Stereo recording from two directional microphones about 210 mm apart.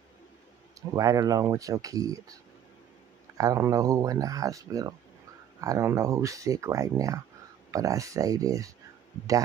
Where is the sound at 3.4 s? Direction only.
15° right (ahead or behind).